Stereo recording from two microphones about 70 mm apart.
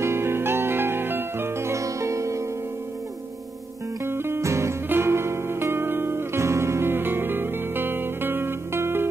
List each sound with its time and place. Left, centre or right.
0.0 s music: right
4.0 s music: right